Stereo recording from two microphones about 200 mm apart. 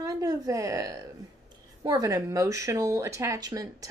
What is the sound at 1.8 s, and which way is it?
A woman's voice, 15° right (ahead or behind).